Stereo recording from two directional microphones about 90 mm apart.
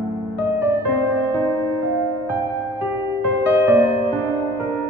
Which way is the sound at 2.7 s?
20° right (ahead or behind).